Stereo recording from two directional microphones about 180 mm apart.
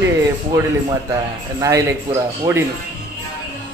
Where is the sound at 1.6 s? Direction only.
15° right (ahead or behind).